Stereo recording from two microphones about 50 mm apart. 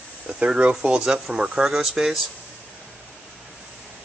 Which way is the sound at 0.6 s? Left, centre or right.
Centre.